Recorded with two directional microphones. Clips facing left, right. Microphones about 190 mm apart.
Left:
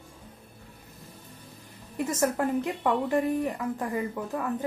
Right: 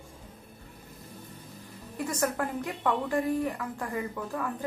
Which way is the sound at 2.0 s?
20° left (ahead or behind).